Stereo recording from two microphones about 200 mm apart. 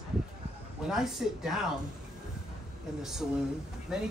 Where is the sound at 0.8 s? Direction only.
5° right (ahead or behind).